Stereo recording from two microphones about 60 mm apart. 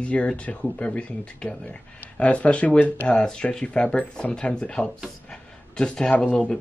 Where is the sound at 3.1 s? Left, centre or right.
Centre.